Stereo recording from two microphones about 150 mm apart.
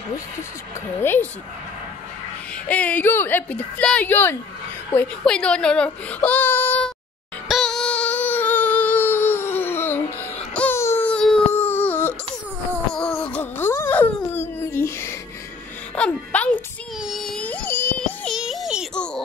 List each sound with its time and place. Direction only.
1.0 s speech: 15° left (ahead or behind)
2.7 s speech: 10° left (ahead or behind)
7.4 s music: centre (ahead or behind)
10.5 s baby cry: 10° left (ahead or behind)
11.1 s a sound: 5° left (ahead or behind)
15.9 s music: 10° left (ahead or behind)